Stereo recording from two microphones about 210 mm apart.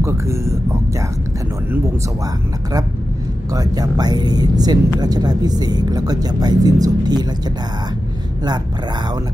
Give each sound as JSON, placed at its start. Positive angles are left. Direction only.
{"t": 0.0, "sound": "speech", "side_deg": -15}
{"t": 3.5, "sound": "speech", "side_deg": -20}